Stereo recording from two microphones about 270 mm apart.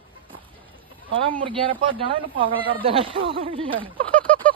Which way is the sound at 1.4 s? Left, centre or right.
Centre.